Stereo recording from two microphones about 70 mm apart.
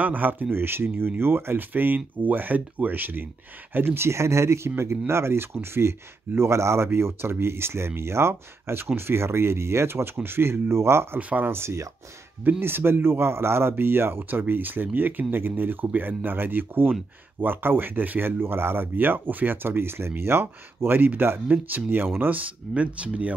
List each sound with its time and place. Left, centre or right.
0.0 s speech: right
11.1 s speech: right
11.5 s speech: right; by 23.3 s centre